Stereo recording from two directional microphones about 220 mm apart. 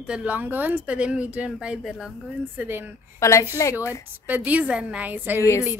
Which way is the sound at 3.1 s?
15° left (ahead or behind).